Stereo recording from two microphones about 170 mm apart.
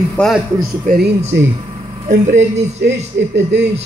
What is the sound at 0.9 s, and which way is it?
Speech, 55° right (ahead or behind).